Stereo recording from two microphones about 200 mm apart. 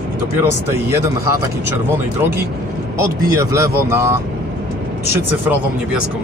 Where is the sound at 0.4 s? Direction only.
15° right (ahead or behind).